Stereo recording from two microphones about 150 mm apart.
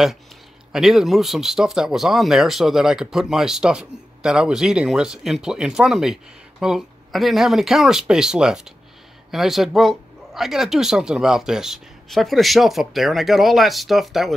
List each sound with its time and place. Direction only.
0.7 s speech: 5° right (ahead or behind)